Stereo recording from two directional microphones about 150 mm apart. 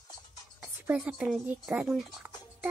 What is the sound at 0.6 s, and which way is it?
Speech, 10° right (ahead or behind).